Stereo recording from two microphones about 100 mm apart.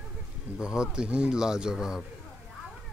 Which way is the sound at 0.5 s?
10° right (ahead or behind).